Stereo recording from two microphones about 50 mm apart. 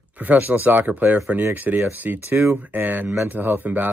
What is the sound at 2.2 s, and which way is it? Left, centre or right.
Speech, right.